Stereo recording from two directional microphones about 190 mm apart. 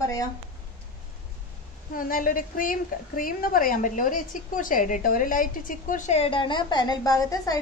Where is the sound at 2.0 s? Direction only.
45° left (ahead or behind).